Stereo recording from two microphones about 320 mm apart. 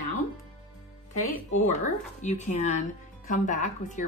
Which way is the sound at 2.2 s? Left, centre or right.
Left.